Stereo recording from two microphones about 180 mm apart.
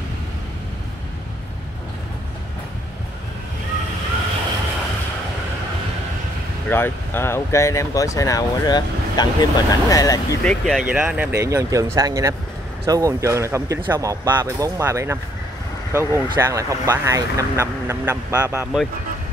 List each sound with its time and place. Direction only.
6.7 s speech: 10° left (ahead or behind)
10.4 s speech: 5° left (ahead or behind)
10.9 s speech: 5° right (ahead or behind)